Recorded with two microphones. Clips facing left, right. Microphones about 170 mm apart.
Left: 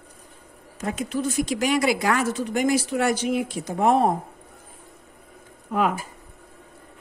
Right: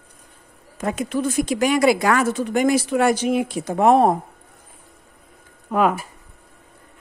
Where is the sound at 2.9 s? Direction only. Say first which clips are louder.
Right 4 dB; 85° right.